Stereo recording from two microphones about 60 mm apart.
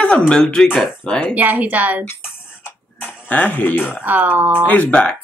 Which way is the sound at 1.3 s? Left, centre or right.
Right.